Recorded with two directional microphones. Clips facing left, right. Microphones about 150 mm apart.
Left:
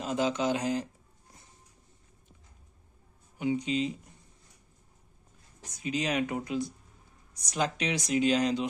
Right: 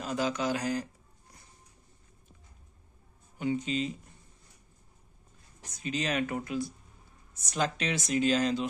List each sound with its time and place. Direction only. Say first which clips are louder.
0.0 s speech: left 2 dB; 20° left (ahead or behind)
3.3 s speech: left 2 dB; 15° left (ahead or behind)
5.6 s speech: left 2 dB; 10° left (ahead or behind)